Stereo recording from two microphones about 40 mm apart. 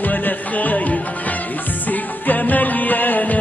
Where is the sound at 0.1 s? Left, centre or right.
Left.